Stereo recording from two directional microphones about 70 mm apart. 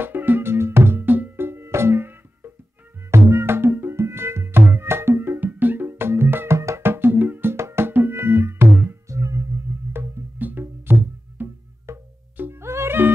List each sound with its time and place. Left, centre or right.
0.0 s music: right
9.1 s music: right